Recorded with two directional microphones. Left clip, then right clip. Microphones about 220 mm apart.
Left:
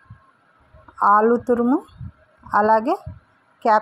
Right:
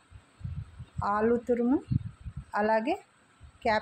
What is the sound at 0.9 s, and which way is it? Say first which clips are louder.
A woman's voice: left 12 dB; 25° left (ahead or behind).